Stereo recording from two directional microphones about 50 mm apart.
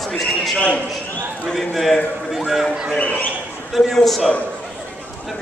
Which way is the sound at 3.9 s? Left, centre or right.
Centre.